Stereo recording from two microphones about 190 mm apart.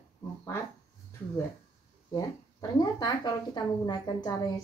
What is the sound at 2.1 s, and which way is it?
Speech, 20° left (ahead or behind).